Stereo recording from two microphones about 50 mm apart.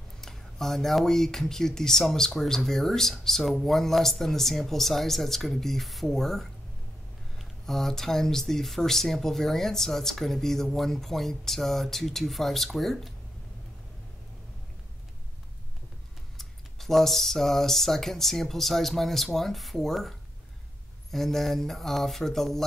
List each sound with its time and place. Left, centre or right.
0.2 s speech: centre
16.3 s speech: centre